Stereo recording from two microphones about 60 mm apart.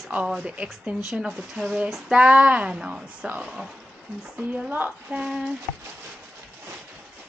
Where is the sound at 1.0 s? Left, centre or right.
Centre.